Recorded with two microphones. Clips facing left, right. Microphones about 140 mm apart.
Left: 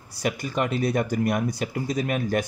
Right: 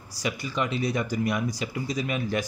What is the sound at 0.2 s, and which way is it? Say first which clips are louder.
Speech: left 3 dB; 50° left (ahead or behind).